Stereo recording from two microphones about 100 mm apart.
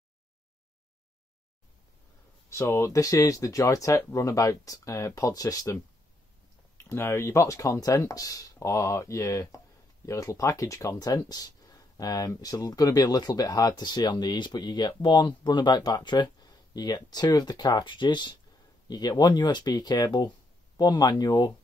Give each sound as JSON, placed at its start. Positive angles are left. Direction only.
{"t": 2.5, "sound": "speech", "side_deg": 30}
{"t": 6.8, "sound": "speech", "side_deg": 25}